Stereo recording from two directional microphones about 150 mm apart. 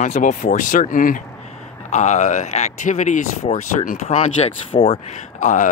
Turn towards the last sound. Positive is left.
turn(degrees=55)  # may be behind; listen again after turning